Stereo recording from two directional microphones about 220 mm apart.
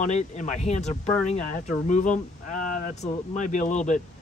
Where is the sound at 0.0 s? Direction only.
35° left (ahead or behind).